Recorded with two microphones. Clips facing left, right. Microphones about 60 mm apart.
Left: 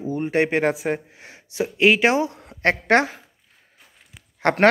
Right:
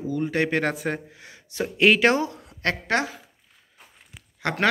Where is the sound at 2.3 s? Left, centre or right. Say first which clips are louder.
Left 6 dB; left.